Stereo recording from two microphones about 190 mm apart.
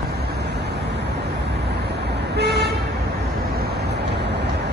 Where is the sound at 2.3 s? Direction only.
60° right (ahead or behind).